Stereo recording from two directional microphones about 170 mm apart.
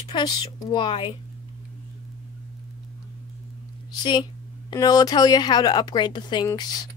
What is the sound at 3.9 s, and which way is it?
Speech, 25° left (ahead or behind).